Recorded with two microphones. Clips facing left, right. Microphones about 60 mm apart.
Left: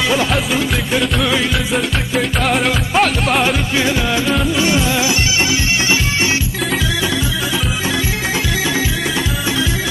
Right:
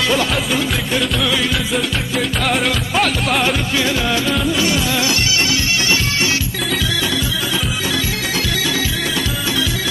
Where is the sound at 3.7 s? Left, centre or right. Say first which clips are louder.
Left 1 dB; centre.